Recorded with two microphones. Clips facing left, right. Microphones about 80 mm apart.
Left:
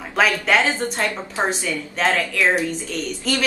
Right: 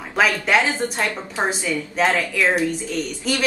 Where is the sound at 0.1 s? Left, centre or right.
Centre.